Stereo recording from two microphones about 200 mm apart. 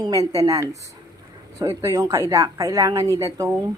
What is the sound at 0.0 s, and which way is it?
A woman's voice, 15° right (ahead or behind).